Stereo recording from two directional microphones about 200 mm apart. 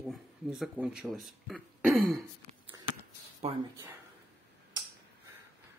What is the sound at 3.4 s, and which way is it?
Speech, 30° right (ahead or behind).